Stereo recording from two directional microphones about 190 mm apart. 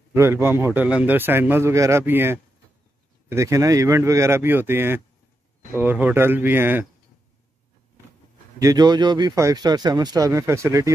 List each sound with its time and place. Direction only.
0.1 s a man's voice: 15° right (ahead or behind)
8.5 s speech: 20° right (ahead or behind)